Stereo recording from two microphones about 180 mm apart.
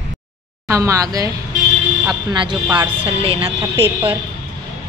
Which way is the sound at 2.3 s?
25° right (ahead or behind).